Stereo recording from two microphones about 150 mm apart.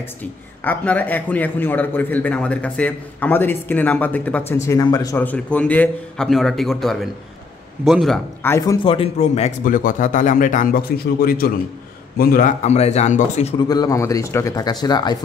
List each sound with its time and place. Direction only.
0.2 s a man's voice: 10° left (ahead or behind)
5.2 s a man's voice: 10° left (ahead or behind)
8.4 s a man's voice: 15° left (ahead or behind)
8.8 s a man's voice: 40° left (ahead or behind); by 12.5 s 75° left (ahead or behind)
12.6 s speech: 45° left (ahead or behind)
13.6 s speech: 25° left (ahead or behind)